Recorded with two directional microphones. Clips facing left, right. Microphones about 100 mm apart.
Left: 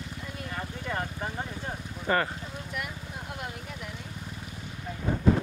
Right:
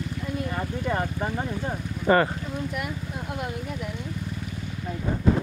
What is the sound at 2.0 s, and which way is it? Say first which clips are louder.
Speech: right 7 dB; 40° right (ahead or behind).